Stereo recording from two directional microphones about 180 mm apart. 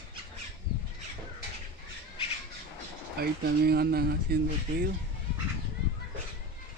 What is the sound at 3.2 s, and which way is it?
Speech, 60° right (ahead or behind).